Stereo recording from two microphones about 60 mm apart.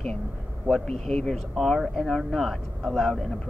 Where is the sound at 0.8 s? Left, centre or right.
Centre.